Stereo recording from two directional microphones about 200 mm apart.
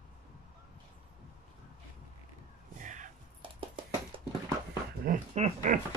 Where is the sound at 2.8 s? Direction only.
40° right (ahead or behind).